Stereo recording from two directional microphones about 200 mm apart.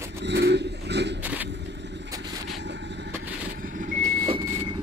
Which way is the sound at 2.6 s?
60° right (ahead or behind).